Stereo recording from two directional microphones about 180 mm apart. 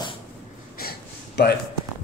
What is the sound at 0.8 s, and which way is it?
Gasp, 60° left (ahead or behind).